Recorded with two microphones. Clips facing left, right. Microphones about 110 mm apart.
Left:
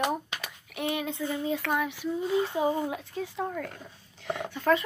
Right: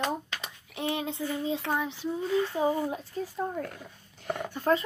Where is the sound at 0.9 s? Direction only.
25° right (ahead or behind).